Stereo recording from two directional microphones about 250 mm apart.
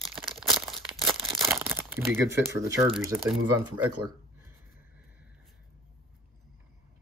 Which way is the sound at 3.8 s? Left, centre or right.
Right.